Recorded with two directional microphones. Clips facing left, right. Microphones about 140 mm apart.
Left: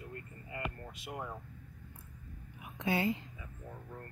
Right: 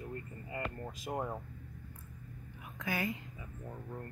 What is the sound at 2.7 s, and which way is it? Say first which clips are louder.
Speech: left 4 dB; 25° left (ahead or behind).